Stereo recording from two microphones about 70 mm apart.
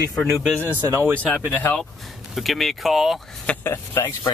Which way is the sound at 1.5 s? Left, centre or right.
Left.